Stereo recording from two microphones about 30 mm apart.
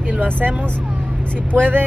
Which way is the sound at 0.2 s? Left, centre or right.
Right.